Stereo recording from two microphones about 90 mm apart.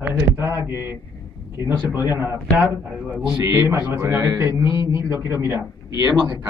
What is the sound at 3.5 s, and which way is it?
A man's voice, 30° right (ahead or behind).